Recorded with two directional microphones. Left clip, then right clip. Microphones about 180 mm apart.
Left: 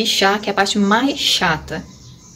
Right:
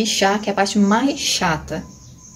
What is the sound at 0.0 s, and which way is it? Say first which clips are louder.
Speech: left 2 dB; 5° right (ahead or behind).